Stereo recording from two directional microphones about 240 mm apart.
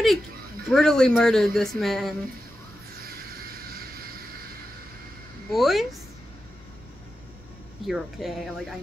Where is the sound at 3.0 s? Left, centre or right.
Right.